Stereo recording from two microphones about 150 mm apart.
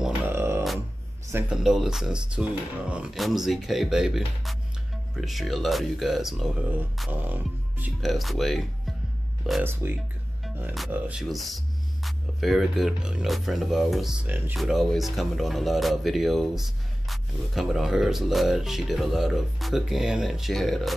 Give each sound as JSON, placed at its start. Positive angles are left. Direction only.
{"t": 0.3, "sound": "music", "side_deg": -15}
{"t": 1.3, "sound": "speech", "side_deg": -5}
{"t": 8.0, "sound": "speech", "side_deg": 0}
{"t": 9.6, "sound": "speech", "side_deg": -15}
{"t": 14.6, "sound": "speech", "side_deg": 0}